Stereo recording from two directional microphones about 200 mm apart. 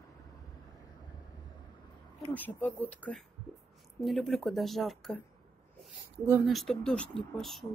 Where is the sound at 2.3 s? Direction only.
10° left (ahead or behind).